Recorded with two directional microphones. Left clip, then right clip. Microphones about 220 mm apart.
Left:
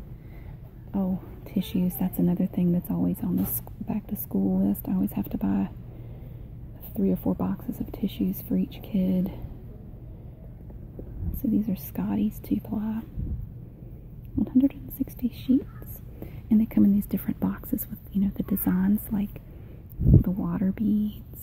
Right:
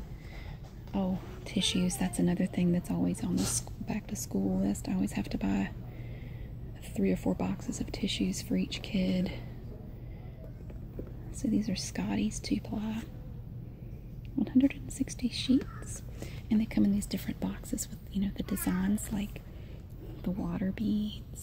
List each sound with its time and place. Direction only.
0.9 s speech: 10° left (ahead or behind)
7.0 s speech: 10° left (ahead or behind)
11.5 s speech: 15° left (ahead or behind)
14.4 s speech: 10° left (ahead or behind)